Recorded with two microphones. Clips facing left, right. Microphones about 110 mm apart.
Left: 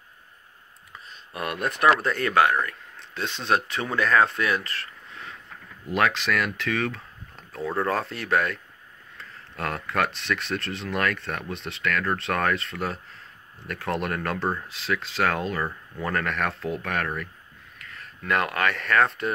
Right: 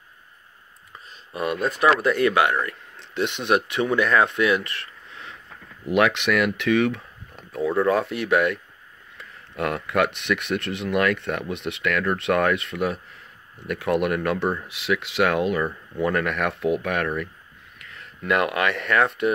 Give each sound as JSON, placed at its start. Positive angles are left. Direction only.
{"t": 1.3, "sound": "speech", "side_deg": 0}
{"t": 1.8, "sound": "speech", "side_deg": -10}
{"t": 5.9, "sound": "speech", "side_deg": -20}